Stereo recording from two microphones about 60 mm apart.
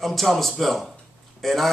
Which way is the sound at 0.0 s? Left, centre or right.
Centre.